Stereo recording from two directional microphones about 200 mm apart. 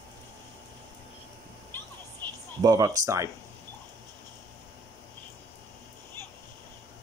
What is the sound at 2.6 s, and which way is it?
Speech, 15° right (ahead or behind).